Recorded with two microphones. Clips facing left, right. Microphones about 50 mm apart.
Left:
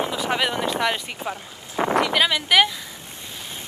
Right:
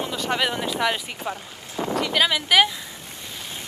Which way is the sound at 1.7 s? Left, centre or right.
Left.